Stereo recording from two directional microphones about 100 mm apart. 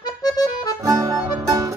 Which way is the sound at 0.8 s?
35° right (ahead or behind).